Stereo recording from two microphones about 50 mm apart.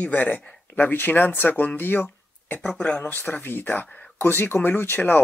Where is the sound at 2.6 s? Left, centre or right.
Centre.